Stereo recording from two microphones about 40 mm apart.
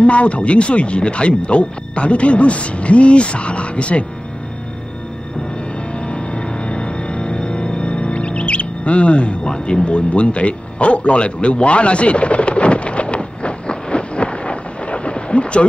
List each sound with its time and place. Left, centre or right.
0.0 s speech: left
5.9 s music: left